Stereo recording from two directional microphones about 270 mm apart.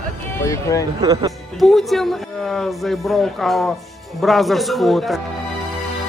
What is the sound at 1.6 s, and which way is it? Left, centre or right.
Speech, centre.